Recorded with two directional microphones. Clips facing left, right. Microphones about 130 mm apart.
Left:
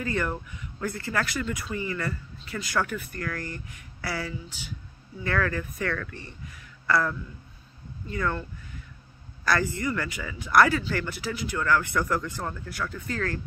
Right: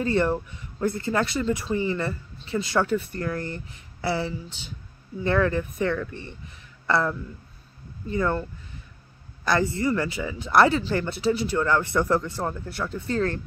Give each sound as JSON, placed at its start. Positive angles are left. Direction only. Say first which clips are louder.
{"t": 0.0, "sound": "speech", "louder": "right 6 dB", "side_deg": -30}